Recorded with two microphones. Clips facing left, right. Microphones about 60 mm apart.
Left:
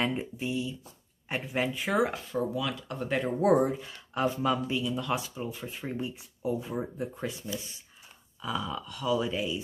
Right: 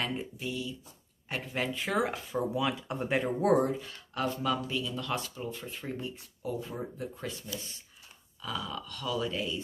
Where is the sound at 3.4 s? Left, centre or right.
Centre.